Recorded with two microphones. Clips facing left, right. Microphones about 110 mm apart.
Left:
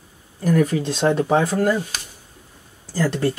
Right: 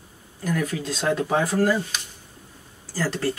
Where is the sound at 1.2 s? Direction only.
50° left (ahead or behind).